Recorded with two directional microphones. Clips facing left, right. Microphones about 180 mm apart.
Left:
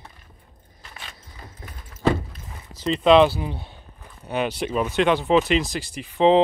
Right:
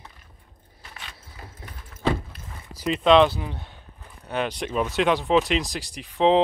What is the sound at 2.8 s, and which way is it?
Speech, centre (ahead or behind).